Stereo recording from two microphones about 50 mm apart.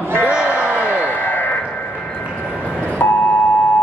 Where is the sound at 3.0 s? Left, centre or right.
Left.